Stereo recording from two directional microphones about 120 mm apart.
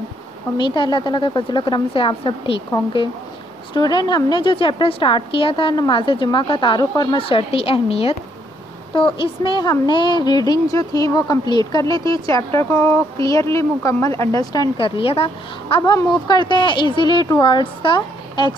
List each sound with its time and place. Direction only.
0.6 s a woman's voice: 40° left (ahead or behind)
3.7 s a woman's voice: 35° left (ahead or behind)
14.8 s a woman's voice: 45° left (ahead or behind)
15.8 s speech: 35° left (ahead or behind)